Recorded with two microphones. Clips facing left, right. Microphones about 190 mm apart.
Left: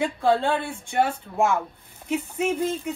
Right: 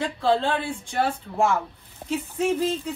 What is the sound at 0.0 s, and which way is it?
Speech, 15° left (ahead or behind).